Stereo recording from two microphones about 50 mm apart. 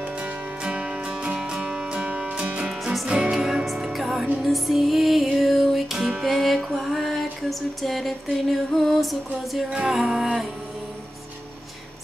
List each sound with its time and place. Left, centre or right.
0.0 s music: centre
2.7 s music: centre
9.7 s music: centre